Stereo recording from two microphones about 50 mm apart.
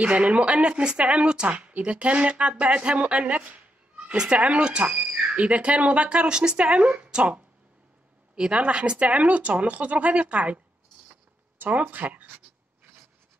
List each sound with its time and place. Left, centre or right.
0.0 s speech: right
9.2 s speech: right
11.7 s speech: right